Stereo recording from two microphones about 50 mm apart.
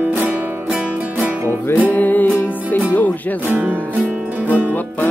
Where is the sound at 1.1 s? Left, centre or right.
Right.